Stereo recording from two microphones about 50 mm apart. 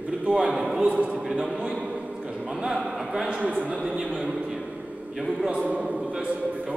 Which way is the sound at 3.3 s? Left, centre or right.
Right.